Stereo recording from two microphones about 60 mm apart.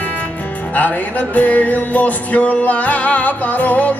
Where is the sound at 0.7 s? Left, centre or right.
Left.